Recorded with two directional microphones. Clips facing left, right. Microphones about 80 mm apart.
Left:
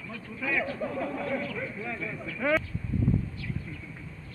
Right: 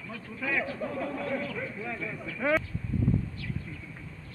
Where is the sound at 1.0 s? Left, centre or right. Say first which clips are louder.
Even; left.